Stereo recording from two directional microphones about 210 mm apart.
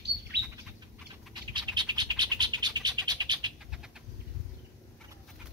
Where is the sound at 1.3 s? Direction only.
20° right (ahead or behind).